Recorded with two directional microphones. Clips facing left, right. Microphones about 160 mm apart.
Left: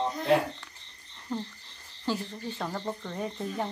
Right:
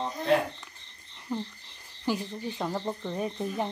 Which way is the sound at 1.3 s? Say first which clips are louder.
Right 1 dB; 10° right (ahead or behind).